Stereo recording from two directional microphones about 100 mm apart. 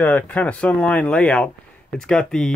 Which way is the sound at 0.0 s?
15° left (ahead or behind).